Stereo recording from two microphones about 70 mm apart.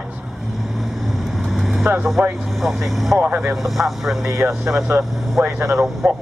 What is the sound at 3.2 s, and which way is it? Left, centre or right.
Speech, right.